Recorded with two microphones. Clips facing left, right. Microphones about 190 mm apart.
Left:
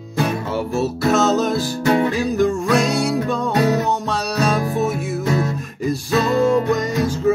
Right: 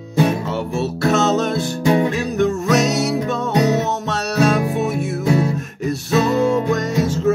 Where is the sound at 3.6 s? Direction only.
20° right (ahead or behind).